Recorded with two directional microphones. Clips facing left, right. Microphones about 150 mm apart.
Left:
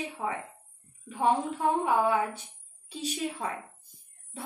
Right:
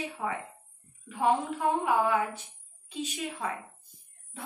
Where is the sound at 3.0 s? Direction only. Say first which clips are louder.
Left 2 dB; 35° left (ahead or behind).